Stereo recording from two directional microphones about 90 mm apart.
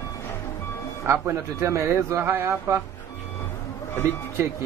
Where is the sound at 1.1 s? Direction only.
30° right (ahead or behind).